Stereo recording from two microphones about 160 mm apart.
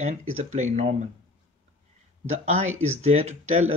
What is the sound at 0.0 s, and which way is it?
Speech, 45° right (ahead or behind).